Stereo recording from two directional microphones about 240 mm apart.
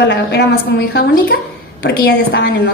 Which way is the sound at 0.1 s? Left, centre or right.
Left.